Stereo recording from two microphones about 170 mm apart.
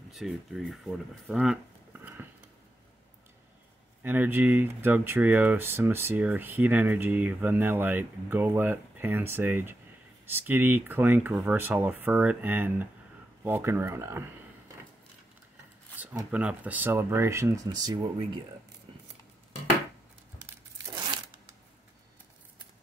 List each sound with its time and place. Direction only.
0.1 s speech: centre (ahead or behind)
4.0 s speech: 10° right (ahead or behind)
16.3 s speech: 10° right (ahead or behind); by 18.4 s 25° right (ahead or behind)